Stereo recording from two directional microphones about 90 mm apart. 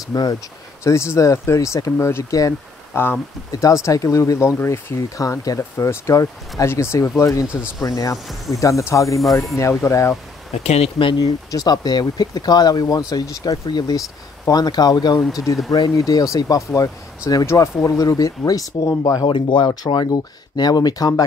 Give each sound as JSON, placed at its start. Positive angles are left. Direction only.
{"t": 0.1, "sound": "speech", "side_deg": 45}
{"t": 0.8, "sound": "speech", "side_deg": 30}
{"t": 3.6, "sound": "speech", "side_deg": 35}
{"t": 5.6, "sound": "speech", "side_deg": 30}
{"t": 9.2, "sound": "speech", "side_deg": 0}
{"t": 9.6, "sound": "speech", "side_deg": 30}
{"t": 11.5, "sound": "speech", "side_deg": 50}
{"t": 13.9, "sound": "speech", "side_deg": 40}
{"t": 19.2, "sound": "speech", "side_deg": 65}
{"t": 19.6, "sound": "speech", "side_deg": 50}